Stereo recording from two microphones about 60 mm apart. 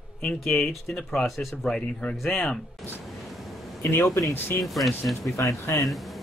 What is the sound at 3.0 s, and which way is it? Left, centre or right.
Vehicle, centre.